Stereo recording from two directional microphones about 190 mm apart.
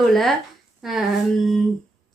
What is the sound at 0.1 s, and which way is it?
A woman's voice, centre (ahead or behind).